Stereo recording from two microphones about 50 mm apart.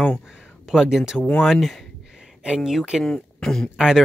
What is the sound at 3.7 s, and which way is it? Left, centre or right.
Speech, centre.